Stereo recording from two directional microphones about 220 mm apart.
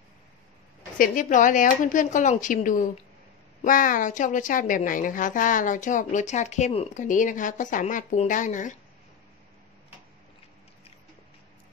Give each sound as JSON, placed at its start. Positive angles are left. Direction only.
{"t": 0.9, "sound": "a woman's voice", "side_deg": 40}